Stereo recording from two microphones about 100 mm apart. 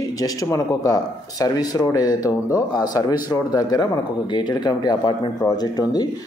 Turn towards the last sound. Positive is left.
turn(degrees=40)  # may be behind; listen again after turning